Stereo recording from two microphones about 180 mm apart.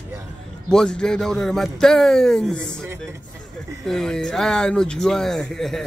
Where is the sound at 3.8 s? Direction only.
Centre (ahead or behind).